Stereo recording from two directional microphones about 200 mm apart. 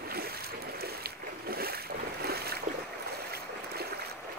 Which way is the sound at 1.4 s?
50° right (ahead or behind).